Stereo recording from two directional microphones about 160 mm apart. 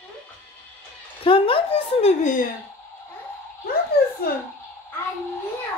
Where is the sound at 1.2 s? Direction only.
35° left (ahead or behind).